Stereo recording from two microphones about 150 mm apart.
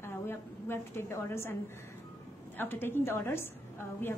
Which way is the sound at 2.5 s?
15° left (ahead or behind).